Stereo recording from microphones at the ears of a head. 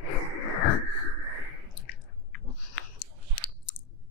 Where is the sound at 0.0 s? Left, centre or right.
Left.